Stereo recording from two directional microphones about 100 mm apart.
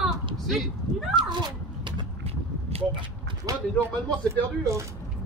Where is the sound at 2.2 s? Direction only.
90° right.